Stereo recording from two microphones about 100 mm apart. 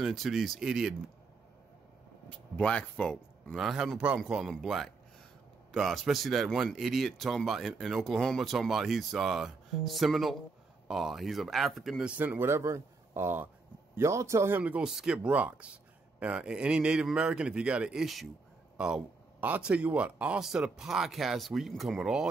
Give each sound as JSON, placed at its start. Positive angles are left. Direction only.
{"t": 0.0, "sound": "a man's voice", "side_deg": 0}
{"t": 2.2, "sound": "speech", "side_deg": 10}
{"t": 3.5, "sound": "a man's voice", "side_deg": -5}
{"t": 12.2, "sound": "speech", "side_deg": -20}
{"t": 14.6, "sound": "a man's voice", "side_deg": -10}